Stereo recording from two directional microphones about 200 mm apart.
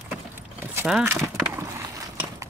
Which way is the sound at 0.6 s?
10° right (ahead or behind).